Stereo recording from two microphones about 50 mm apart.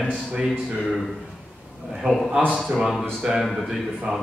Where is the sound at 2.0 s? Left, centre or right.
Centre.